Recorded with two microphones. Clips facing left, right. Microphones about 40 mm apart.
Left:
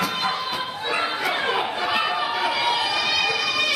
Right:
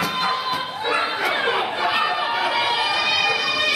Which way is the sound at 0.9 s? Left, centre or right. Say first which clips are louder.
Right 3 dB; centre.